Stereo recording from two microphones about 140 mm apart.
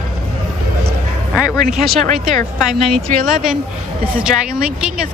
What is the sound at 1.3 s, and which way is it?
A woman's voice, 5° right (ahead or behind).